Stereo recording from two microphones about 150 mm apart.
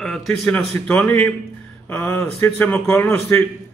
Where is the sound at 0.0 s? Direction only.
5° left (ahead or behind).